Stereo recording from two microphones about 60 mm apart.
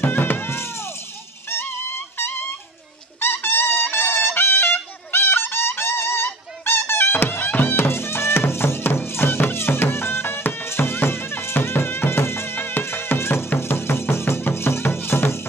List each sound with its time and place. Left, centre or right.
0.0 s music: left